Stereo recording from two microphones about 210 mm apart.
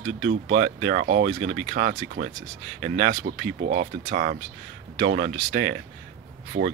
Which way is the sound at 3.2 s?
55° right (ahead or behind).